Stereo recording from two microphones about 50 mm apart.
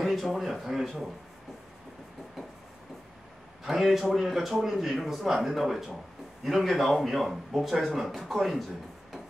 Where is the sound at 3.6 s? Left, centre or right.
Centre.